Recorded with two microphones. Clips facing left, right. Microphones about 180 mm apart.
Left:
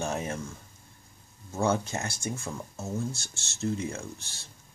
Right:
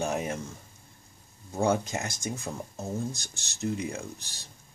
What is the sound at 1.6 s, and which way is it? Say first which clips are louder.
Speech: right 1 dB; 15° right (ahead or behind).